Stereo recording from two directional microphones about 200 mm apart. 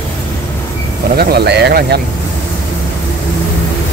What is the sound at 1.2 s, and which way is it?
Speech, 50° right (ahead or behind).